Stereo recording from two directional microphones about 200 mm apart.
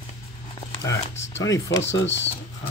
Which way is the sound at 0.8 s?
15° left (ahead or behind).